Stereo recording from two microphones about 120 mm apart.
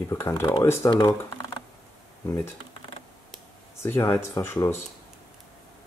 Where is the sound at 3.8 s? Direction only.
20° left (ahead or behind).